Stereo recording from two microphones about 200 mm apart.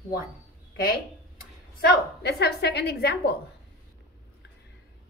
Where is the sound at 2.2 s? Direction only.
55° left (ahead or behind).